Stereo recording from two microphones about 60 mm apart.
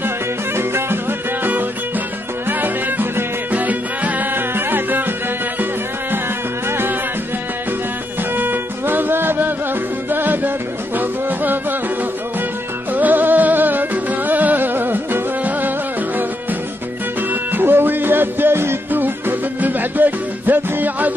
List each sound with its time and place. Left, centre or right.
0.6 s music: right
2.6 s music: right
8.4 s music: right
12.9 s music: right
17.3 s music: right